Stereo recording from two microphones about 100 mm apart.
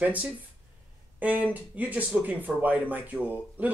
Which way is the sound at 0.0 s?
15° right (ahead or behind).